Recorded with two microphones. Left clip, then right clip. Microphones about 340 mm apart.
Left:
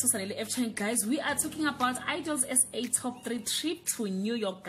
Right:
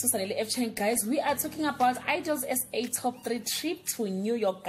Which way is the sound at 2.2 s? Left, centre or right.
Right.